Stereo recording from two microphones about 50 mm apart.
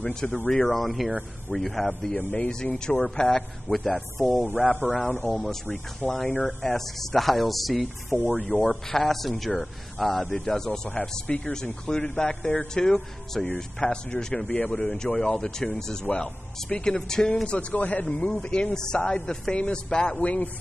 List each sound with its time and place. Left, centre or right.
0.0 s speech: centre
1.9 s speech: left
3.3 s speech: centre
4.3 s speech: right
5.3 s speech: centre
8.1 s speech: left
8.6 s speech: centre
10.9 s speech: left
14.8 s speech: centre